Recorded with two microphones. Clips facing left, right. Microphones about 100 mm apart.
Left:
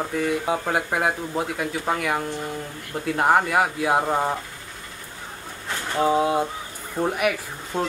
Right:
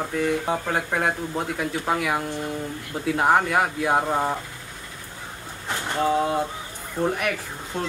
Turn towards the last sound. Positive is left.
turn(degrees=15)  # may be behind; listen again after turning